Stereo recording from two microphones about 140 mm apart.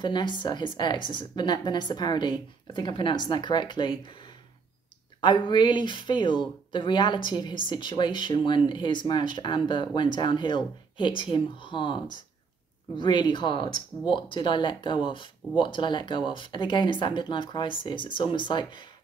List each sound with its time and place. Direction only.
0.0 s speech: 35° left (ahead or behind)
5.2 s speech: 35° left (ahead or behind)